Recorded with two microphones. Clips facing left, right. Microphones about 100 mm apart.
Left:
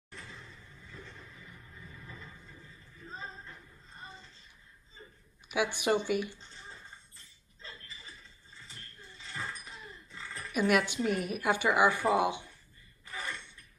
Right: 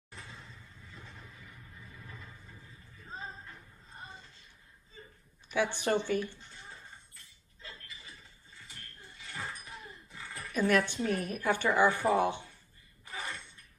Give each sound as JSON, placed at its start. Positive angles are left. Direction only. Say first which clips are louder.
{"t": 5.5, "sound": "a woman's voice", "louder": "even", "side_deg": 15}
{"t": 10.5, "sound": "a woman's voice", "louder": "even", "side_deg": 15}
{"t": 13.0, "sound": "a sound", "louder": "even", "side_deg": -20}